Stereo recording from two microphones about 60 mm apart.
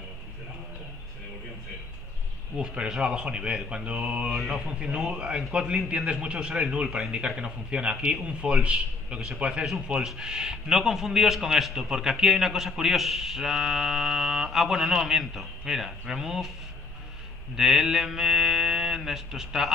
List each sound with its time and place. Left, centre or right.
2.5 s a man's voice: centre
4.4 s speech: centre
4.7 s a man's voice: centre
17.6 s a man's voice: centre